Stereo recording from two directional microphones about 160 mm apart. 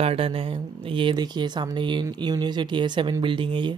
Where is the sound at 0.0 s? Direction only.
35° right (ahead or behind).